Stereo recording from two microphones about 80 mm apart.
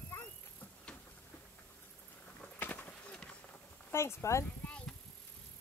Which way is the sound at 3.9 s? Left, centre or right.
Left.